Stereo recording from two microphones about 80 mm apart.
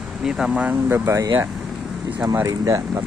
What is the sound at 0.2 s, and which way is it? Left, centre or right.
Speech, centre.